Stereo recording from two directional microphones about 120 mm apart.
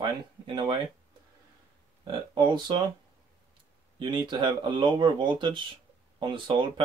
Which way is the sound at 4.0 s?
40° right (ahead or behind).